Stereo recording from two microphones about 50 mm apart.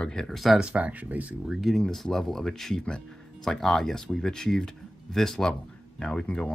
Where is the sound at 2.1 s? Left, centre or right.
Centre.